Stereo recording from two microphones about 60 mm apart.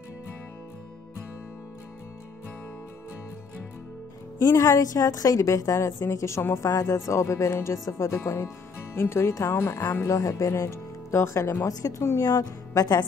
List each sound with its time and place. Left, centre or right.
4.4 s a woman's voice: left
6.7 s speech: left
7.1 s speech: left
10.0 s speech: left
11.6 s a woman's voice: left